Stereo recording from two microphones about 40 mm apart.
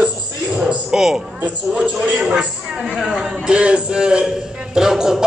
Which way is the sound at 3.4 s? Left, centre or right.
Right.